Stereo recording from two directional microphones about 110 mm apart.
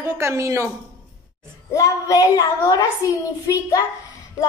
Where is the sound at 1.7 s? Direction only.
30° left (ahead or behind).